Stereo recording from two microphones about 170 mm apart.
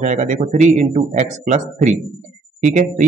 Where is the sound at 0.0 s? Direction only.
45° right (ahead or behind).